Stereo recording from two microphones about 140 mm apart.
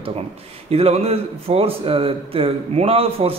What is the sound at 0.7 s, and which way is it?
Speech, 45° right (ahead or behind).